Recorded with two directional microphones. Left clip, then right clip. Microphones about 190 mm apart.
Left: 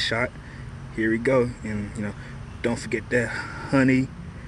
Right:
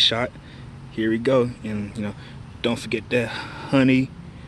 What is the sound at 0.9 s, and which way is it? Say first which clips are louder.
Speech: right 1 dB; 20° right (ahead or behind).